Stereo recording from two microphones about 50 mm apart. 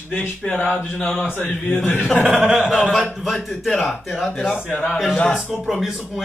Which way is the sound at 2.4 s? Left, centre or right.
Right.